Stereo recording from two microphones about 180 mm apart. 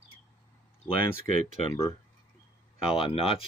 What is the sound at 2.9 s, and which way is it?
Speech, 30° left (ahead or behind).